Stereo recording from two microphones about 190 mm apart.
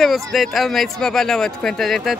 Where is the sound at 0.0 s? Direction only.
Centre (ahead or behind).